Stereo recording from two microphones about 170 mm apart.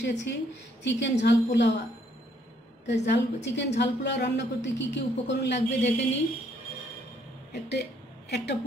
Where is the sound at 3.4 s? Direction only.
90° left.